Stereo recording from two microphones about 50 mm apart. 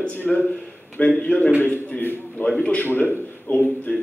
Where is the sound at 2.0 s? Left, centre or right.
Left.